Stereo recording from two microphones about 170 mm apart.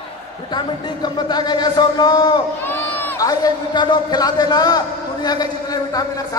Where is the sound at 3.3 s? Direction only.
25° left (ahead or behind).